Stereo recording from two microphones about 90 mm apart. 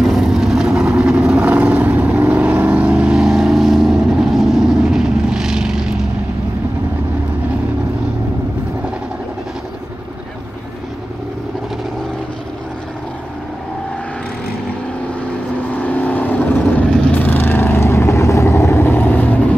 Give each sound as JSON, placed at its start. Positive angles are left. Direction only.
{"t": 0.0, "sound": "vehicle", "side_deg": 0}
{"t": 15.7, "sound": "vehicle", "side_deg": 20}